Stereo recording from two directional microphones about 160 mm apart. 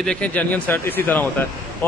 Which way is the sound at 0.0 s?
5° left (ahead or behind).